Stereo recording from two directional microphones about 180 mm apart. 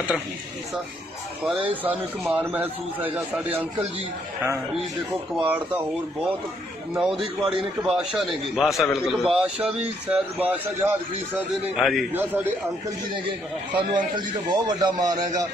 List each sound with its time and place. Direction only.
1.4 s a man's voice: 10° right (ahead or behind)
5.4 s a man's voice: 10° right (ahead or behind)
7.0 s a man's voice: centre (ahead or behind)
11.7 s a man's voice: centre (ahead or behind)
13.7 s a man's voice: 25° right (ahead or behind)